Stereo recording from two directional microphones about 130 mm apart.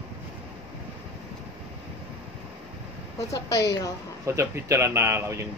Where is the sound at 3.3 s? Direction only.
30° left (ahead or behind).